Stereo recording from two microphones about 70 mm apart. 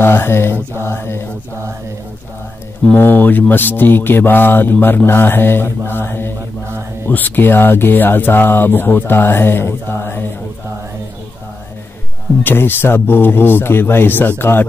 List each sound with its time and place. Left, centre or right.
0.0 s speech: left
3.0 s speech: left
12.4 s speech: left